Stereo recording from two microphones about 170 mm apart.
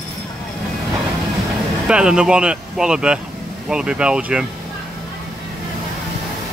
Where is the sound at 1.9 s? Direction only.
5° right (ahead or behind).